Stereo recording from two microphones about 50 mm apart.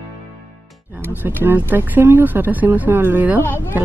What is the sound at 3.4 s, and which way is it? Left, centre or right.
Speech, left.